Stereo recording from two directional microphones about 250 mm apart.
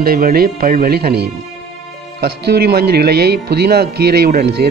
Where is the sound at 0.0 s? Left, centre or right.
Right.